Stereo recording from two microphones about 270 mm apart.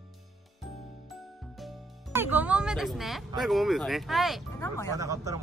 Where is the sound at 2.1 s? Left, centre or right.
Centre.